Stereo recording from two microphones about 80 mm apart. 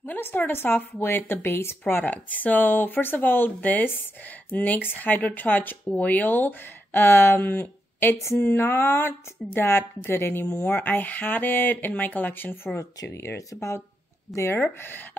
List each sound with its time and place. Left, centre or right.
0.0 s speech: left
12.7 s speech: left
14.6 s speech: left